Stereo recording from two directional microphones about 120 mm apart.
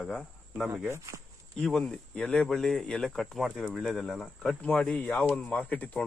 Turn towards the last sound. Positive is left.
turn(degrees=15)  # may be behind; listen again after turning